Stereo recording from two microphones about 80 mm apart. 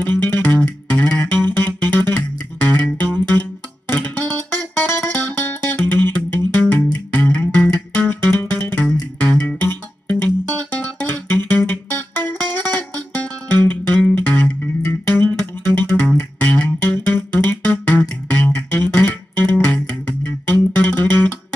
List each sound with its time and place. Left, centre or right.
0.0 s music: left
16.3 s music: centre